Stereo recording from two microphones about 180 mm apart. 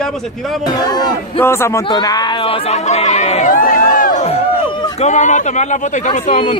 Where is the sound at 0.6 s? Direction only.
20° left (ahead or behind).